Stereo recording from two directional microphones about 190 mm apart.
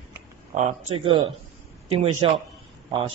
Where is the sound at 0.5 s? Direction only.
30° right (ahead or behind).